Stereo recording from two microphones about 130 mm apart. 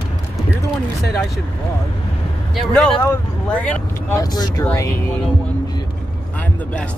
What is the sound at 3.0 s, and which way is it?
Speech, 15° left (ahead or behind).